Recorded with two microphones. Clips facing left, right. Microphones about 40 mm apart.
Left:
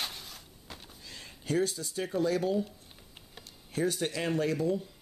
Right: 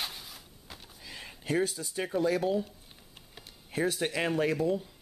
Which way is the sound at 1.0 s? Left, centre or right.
Centre.